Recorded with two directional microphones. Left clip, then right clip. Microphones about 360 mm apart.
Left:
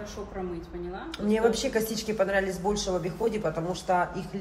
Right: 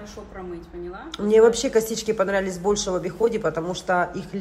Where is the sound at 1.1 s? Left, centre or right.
Centre.